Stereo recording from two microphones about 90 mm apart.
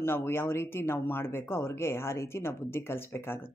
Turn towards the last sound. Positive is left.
turn(degrees=25)  # may be behind; listen again after turning